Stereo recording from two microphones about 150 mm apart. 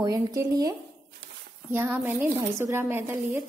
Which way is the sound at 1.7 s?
15° right (ahead or behind).